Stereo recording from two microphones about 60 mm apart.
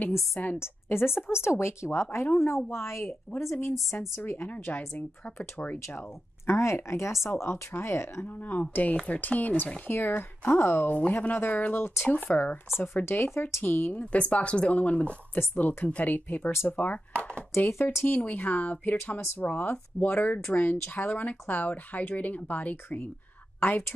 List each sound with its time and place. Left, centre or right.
0.6 s a woman's voice: left
3.3 s speech: left
3.6 s a woman's voice: left
4.6 s speech: left
6.4 s a woman's voice: left
8.5 s speech: left
9.8 s speech: left
10.9 s speech: left
11.3 s speech: left
12.9 s speech: left
14.1 s speech: left
17.6 s speech: left